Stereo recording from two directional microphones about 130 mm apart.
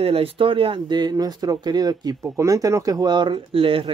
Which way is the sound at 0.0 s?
50° right (ahead or behind).